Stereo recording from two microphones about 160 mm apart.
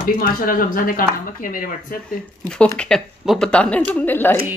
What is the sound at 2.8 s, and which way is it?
Speech, 5° left (ahead or behind).